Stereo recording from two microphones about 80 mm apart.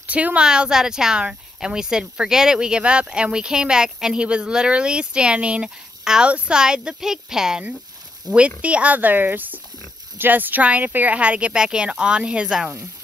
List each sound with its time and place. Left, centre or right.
0.0 s speech: centre